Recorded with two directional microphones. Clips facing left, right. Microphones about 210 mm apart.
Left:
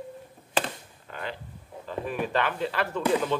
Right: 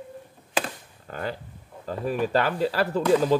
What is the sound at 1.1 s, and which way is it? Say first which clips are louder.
Speech: right 5 dB; 40° right (ahead or behind).